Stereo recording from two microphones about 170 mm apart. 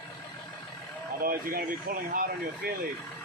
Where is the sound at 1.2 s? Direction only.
60° right (ahead or behind).